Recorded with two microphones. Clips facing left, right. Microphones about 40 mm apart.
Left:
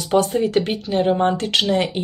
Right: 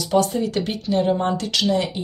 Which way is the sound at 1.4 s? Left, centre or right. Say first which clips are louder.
Left 2 dB; left.